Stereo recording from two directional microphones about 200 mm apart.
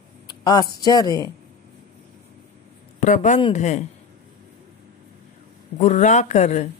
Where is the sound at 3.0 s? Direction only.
40° left (ahead or behind).